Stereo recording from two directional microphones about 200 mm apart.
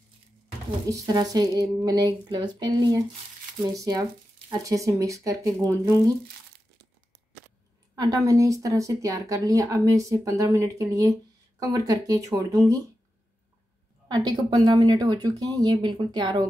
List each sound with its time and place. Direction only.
0.8 s a woman's voice: 15° right (ahead or behind)
7.9 s a woman's voice: 20° right (ahead or behind)
14.0 s a woman's voice: 20° right (ahead or behind)